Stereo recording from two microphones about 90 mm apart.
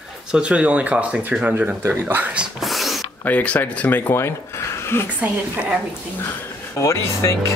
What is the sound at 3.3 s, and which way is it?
Speech, 15° left (ahead or behind).